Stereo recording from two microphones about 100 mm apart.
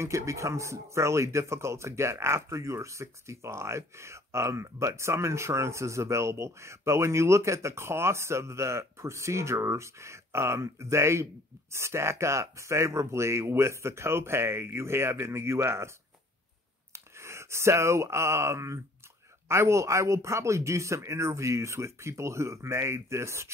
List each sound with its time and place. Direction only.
0.0 s speech: 30° right (ahead or behind)
16.9 s speech: 25° right (ahead or behind)